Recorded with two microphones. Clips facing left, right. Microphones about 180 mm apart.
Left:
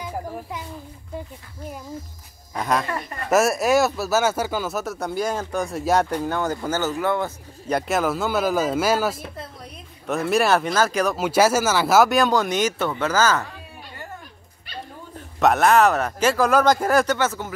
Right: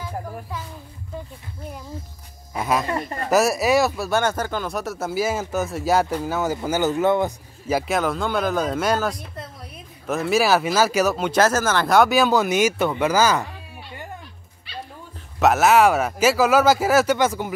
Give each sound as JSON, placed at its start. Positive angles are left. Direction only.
{"t": 0.0, "sound": "a child's voice", "side_deg": 15}
{"t": 2.5, "sound": "speech", "side_deg": -5}
{"t": 7.6, "sound": "speech", "side_deg": 0}
{"t": 11.1, "sound": "speech", "side_deg": 5}
{"t": 15.3, "sound": "speech", "side_deg": -5}